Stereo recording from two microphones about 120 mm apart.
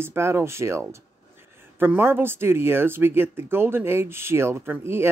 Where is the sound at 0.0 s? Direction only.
20° right (ahead or behind).